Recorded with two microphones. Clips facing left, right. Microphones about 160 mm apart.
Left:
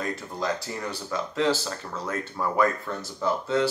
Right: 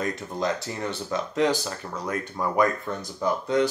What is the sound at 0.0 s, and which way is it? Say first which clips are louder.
Speech: right 2 dB; 20° right (ahead or behind).